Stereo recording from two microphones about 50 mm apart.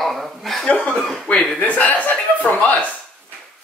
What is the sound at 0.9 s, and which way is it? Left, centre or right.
Speech, centre.